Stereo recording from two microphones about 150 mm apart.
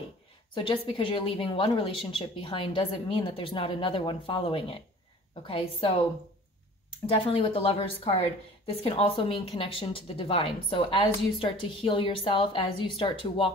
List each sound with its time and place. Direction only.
0.6 s speech: 35° left (ahead or behind)
7.1 s speech: 40° left (ahead or behind)